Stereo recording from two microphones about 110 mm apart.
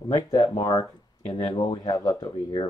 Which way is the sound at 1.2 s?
65° left (ahead or behind).